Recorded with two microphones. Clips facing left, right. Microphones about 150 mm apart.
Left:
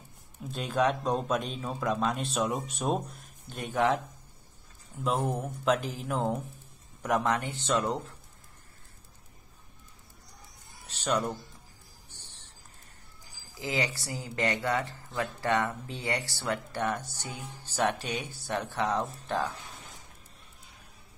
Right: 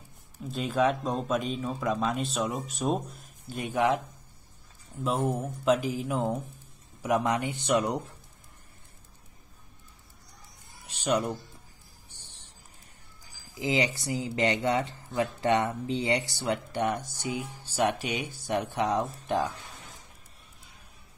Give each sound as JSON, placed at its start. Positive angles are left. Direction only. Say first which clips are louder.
{"t": 0.4, "sound": "speech", "louder": "right 2 dB", "side_deg": 0}
{"t": 5.2, "sound": "speech", "louder": "right 2 dB", "side_deg": -5}
{"t": 10.9, "sound": "speech", "louder": "right 2 dB", "side_deg": -10}
{"t": 13.6, "sound": "speech", "louder": "right 4 dB", "side_deg": -20}